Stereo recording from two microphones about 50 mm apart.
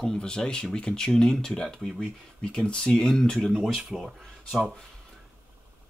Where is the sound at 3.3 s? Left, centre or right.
Centre.